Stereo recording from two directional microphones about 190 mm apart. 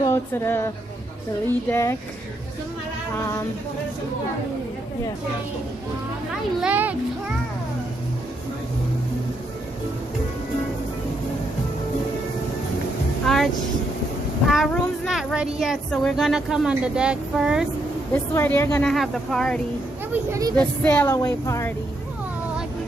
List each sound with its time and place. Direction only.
0.0 s speech: 15° left (ahead or behind)
1.7 s speech: 15° left (ahead or behind)
6.6 s a child's voice: 10° right (ahead or behind)
13.3 s vehicle: centre (ahead or behind)
14.5 s a child's voice: centre (ahead or behind)
18.1 s a child's voice: 10° left (ahead or behind)
20.2 s speech: 20° right (ahead or behind)
20.8 s speech: 10° left (ahead or behind)